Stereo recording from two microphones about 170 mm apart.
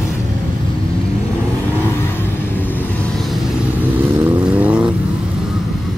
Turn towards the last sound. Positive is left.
turn(degrees=-10)  # may be behind; listen again after turning